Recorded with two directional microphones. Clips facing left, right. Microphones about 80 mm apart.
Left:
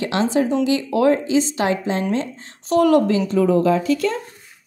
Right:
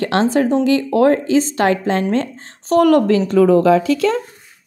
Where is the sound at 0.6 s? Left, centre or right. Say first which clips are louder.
Right 4 dB; right.